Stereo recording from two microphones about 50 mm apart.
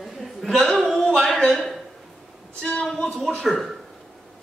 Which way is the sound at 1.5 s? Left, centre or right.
Centre.